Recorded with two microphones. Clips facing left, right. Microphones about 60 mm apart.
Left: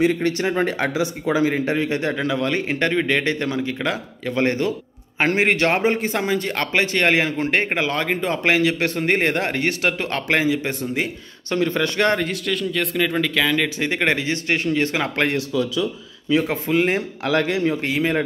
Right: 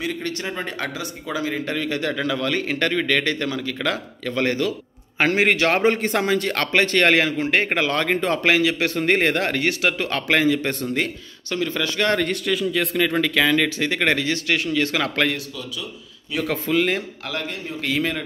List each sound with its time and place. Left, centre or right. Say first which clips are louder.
0.0 s a man's voice: left 8 dB; left
3.9 s speech: left 1 dB; centre
4.5 s a man's voice: left 1 dB; left
5.8 s speech: right 1 dB; centre
8.5 s a man's voice: left 2 dB; left
10.2 s speech: right 1 dB; centre
11.5 s speech: left 3 dB; left
12.2 s speech: right 1 dB; centre
13.7 s a man's voice: even; centre
14.6 s speech: left 2 dB; left
14.9 s a man's voice: even; left
16.3 s a man's voice: left 1 dB; left
17.5 s a man's voice: left 11 dB; left